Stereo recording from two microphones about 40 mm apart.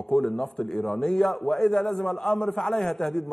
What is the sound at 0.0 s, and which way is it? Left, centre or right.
A man's voice, centre.